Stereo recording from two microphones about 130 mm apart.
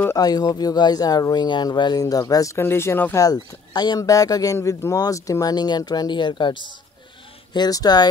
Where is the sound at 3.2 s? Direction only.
30° left (ahead or behind).